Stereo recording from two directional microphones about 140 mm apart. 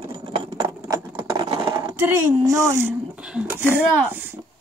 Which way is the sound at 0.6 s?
20° right (ahead or behind).